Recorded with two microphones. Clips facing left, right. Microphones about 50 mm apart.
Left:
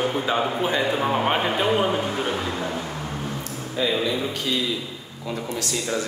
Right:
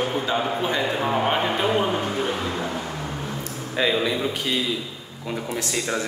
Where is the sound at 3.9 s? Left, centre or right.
Centre.